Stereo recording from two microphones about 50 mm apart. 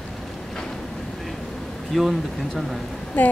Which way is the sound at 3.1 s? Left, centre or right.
Left.